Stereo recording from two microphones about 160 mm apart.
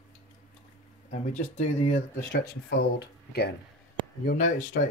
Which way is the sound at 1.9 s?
80° left.